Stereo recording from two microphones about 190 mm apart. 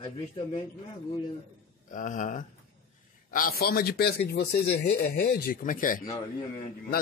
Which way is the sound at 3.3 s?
55° left (ahead or behind).